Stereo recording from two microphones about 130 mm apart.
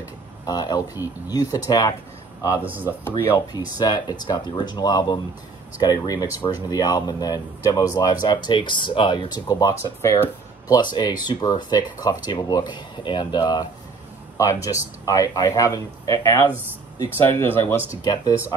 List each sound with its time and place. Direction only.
0.5 s speech: 30° left (ahead or behind)
2.6 s speech: 15° right (ahead or behind)
3.1 s speech: 25° left (ahead or behind)